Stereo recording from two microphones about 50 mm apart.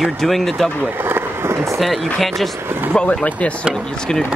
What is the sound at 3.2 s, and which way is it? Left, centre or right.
Speech, left.